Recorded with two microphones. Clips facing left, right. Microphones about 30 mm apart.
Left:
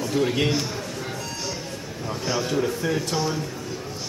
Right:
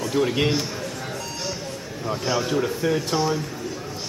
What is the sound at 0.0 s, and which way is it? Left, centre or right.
Speech, centre.